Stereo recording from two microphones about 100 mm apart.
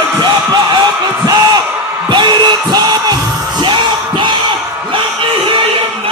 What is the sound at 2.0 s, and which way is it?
Music, 50° right (ahead or behind).